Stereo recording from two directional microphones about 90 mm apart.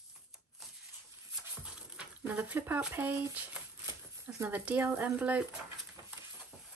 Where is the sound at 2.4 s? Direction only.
20° right (ahead or behind).